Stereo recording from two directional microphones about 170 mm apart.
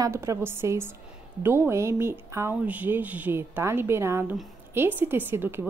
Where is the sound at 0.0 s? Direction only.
15° right (ahead or behind).